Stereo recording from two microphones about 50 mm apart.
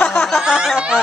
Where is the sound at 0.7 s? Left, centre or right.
Centre.